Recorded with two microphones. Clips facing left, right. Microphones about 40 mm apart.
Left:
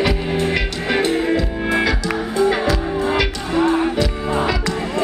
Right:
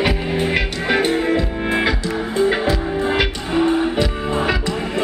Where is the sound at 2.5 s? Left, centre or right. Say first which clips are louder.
Even; centre.